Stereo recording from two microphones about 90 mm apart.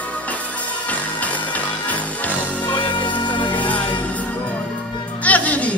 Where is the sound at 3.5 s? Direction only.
15° left (ahead or behind).